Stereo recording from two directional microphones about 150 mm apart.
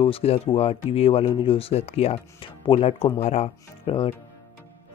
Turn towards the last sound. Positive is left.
turn(degrees=40)  # may be behind; listen again after turning